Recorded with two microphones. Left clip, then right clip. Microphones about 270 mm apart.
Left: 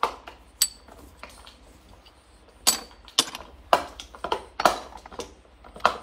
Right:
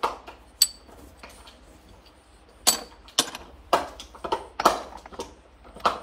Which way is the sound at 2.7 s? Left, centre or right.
Centre.